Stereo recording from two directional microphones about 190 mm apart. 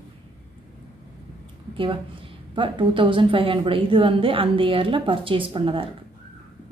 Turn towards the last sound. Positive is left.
turn(degrees=-25)  # may be behind; listen again after turning